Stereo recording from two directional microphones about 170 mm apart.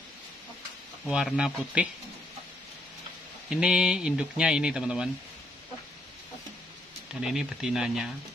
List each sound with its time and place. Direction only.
1.0 s speech: centre (ahead or behind)
3.4 s speech: 5° right (ahead or behind)
7.2 s speech: 5° right (ahead or behind)